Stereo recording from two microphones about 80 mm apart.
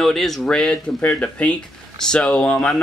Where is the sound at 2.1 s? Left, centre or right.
Centre.